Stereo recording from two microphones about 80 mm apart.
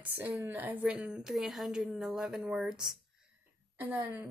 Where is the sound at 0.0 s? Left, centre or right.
Right.